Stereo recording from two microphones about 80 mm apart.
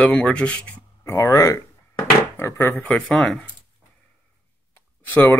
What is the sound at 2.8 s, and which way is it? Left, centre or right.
Speech, centre.